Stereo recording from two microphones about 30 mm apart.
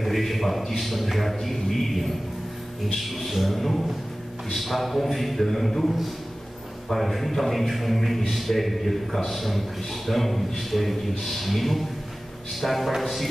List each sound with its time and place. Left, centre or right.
0.0 s a man's voice: centre